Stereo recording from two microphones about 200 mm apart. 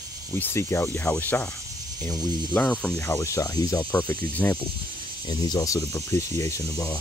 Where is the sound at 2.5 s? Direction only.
5° left (ahead or behind).